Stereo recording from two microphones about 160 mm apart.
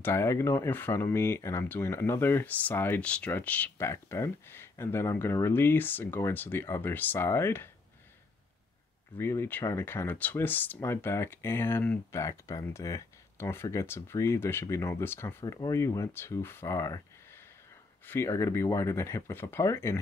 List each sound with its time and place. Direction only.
0.0 s speech: 15° left (ahead or behind)
9.2 s speech: 15° left (ahead or behind)